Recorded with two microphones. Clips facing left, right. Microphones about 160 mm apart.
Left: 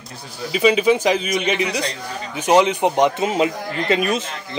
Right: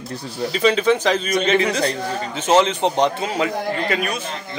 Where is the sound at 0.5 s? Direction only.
10° left (ahead or behind).